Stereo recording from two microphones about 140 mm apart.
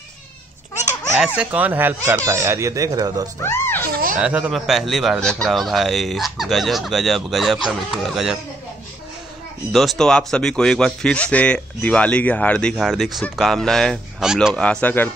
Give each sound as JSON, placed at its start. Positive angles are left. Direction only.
{"t": 1.4, "sound": "speech", "side_deg": -10}
{"t": 3.4, "sound": "music", "side_deg": 15}
{"t": 3.9, "sound": "a sound", "side_deg": -90}
{"t": 4.2, "sound": "a man's voice", "side_deg": -5}
{"t": 9.7, "sound": "a man's voice", "side_deg": 0}
{"t": 14.6, "sound": "speech", "side_deg": 10}